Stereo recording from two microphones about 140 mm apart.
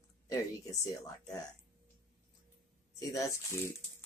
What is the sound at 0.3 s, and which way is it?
Speech, 25° left (ahead or behind).